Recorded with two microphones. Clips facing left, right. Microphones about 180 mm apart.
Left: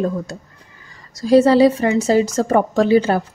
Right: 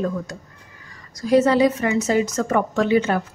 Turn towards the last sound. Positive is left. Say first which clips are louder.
# left 4 dB
turn(degrees=35)  # may be behind; listen again after turning